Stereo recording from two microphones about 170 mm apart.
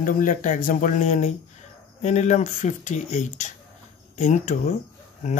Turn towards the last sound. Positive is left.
turn(degrees=45)  # may be behind; listen again after turning